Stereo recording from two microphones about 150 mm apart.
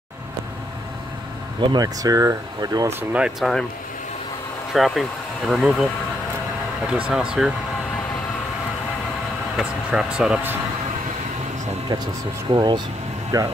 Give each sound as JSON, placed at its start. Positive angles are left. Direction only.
{"t": 1.6, "sound": "speech", "side_deg": -30}
{"t": 4.7, "sound": "speech", "side_deg": 0}
{"t": 7.1, "sound": "speech", "side_deg": -5}
{"t": 9.6, "sound": "speech", "side_deg": -5}
{"t": 12.4, "sound": "speech", "side_deg": -30}